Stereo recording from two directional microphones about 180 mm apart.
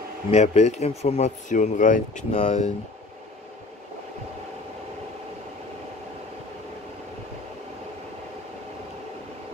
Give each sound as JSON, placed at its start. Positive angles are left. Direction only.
{"t": 0.3, "sound": "speech", "side_deg": 35}